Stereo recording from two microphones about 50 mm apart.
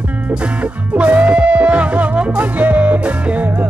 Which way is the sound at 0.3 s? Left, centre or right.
Right.